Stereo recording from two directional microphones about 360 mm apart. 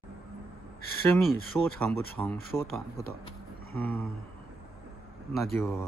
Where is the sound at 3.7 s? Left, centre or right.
Centre.